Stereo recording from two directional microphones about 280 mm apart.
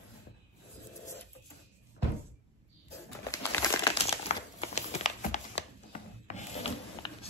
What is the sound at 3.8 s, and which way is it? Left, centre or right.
Crumpling, left.